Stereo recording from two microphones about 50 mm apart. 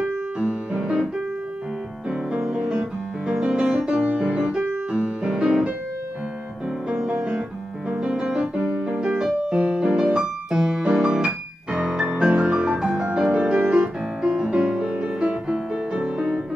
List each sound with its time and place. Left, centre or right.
0.4 s music: centre
2.0 s music: centre
4.3 s piano: right
4.9 s music: centre
6.9 s music: centre
7.9 s piano: centre
8.5 s music: right
13.6 s piano: right
14.2 s music: centre
14.8 s music: right